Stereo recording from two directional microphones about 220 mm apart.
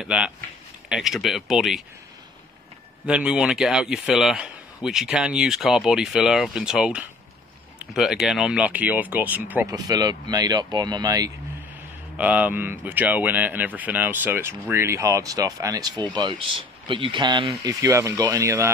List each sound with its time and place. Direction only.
0.0 s a man's voice: centre (ahead or behind)
3.1 s a man's voice: 5° right (ahead or behind)
12.2 s speech: 5° right (ahead or behind)